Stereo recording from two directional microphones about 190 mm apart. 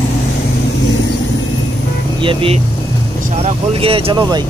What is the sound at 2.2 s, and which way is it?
Speech, 25° right (ahead or behind).